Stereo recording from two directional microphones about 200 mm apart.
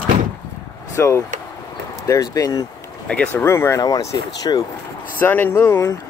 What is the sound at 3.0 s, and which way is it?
Speech, 5° left (ahead or behind).